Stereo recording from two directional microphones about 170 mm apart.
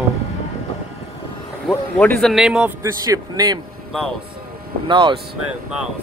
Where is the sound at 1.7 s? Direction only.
10° left (ahead or behind).